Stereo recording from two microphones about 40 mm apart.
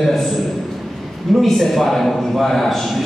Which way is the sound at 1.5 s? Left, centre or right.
Centre.